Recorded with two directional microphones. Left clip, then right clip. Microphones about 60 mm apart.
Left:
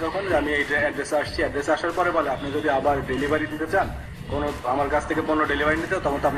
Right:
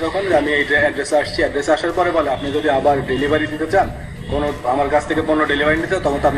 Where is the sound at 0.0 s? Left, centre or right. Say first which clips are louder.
Right 7 dB; right.